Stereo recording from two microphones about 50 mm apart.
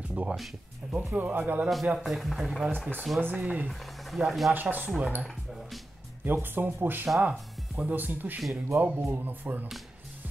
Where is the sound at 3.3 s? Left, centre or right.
Right.